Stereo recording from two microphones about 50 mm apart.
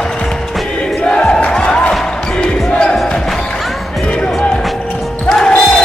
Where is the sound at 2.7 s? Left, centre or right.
Centre.